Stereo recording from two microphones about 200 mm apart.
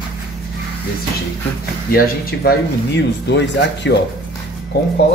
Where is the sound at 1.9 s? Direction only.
50° left (ahead or behind).